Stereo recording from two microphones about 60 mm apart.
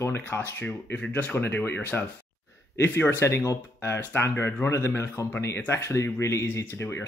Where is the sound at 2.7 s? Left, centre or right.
Left.